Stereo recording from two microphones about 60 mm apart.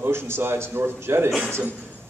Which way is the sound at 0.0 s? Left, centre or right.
Right.